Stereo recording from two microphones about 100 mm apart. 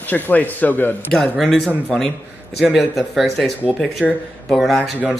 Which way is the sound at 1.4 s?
5° left (ahead or behind).